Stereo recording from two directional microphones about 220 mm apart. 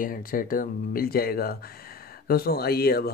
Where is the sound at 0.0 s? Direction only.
40° left (ahead or behind).